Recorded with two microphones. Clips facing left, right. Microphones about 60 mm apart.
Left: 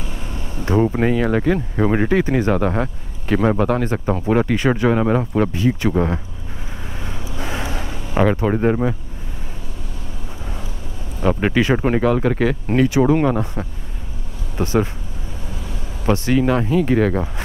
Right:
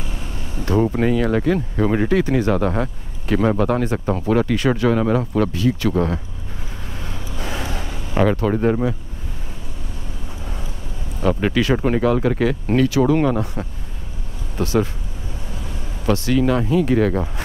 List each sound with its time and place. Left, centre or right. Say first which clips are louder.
0.7 s speech: left 1 dB; centre
2.5 s speech: left 1 dB; centre
7.0 s vehicle: left 2 dB; centre
8.4 s speech: left 1 dB; centre
11.1 s speech: left 1 dB; centre
12.8 s speech: left 2 dB; centre
14.6 s speech: left 1 dB; left
16.1 s speech: left 1 dB; left